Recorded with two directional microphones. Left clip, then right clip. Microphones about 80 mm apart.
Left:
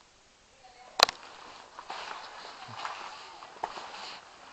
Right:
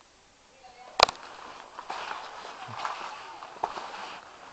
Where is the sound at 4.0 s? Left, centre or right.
Left.